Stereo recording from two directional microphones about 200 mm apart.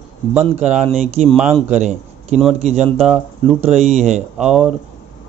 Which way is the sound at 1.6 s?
35° right (ahead or behind).